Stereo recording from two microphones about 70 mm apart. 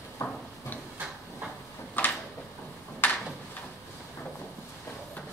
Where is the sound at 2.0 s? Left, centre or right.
Left.